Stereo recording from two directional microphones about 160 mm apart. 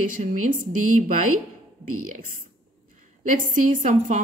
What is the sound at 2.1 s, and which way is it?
A man's voice, 55° right (ahead or behind).